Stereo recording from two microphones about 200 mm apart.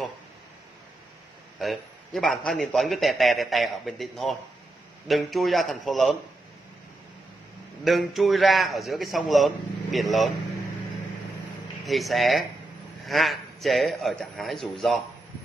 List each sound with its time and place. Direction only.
1.6 s a man's voice: centre (ahead or behind)
7.8 s a man's voice: centre (ahead or behind)
11.8 s a man's voice: centre (ahead or behind)